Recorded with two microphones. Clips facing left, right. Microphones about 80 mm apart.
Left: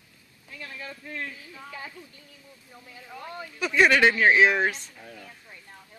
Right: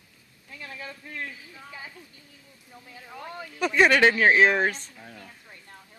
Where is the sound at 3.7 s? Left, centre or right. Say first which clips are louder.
Even; right.